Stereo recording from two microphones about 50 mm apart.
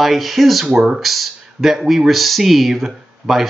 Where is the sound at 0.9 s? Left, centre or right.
Centre.